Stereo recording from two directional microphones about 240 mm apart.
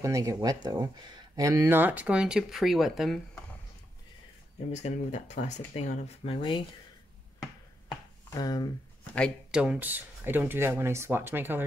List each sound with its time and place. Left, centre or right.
0.0 s speech: centre
4.7 s speech: left
8.4 s speech: centre
9.1 s speech: centre